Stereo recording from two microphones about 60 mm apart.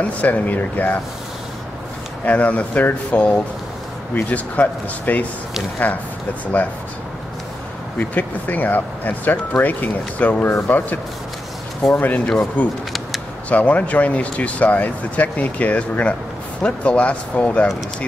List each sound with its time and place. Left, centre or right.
0.0 s speech: left
2.2 s speech: left
6.4 s speech: left
8.0 s speech: left
11.9 s speech: left